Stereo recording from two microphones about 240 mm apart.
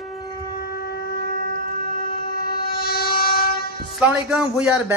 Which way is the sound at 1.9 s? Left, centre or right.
Left.